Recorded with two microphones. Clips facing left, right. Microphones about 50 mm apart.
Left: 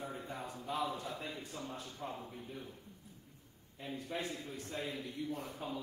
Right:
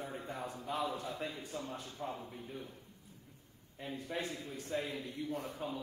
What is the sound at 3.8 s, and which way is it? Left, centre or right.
A man's voice, right.